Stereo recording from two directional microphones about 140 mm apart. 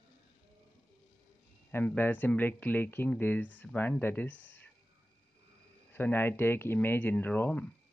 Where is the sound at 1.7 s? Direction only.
15° left (ahead or behind).